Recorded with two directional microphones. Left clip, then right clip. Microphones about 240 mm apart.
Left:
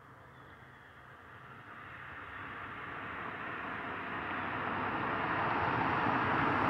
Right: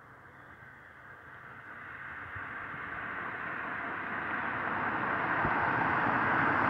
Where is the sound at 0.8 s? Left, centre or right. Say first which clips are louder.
Right 3 dB; left.